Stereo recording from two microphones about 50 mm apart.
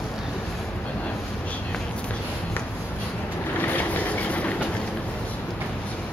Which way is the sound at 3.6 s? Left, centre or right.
Left.